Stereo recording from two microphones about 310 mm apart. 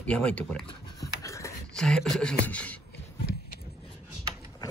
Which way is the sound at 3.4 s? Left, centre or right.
Left.